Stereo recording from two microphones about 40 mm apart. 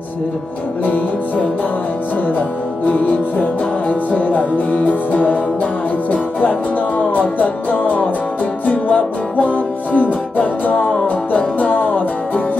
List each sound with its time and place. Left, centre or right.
0.8 s music: left
2.8 s music: left
7.0 s music: left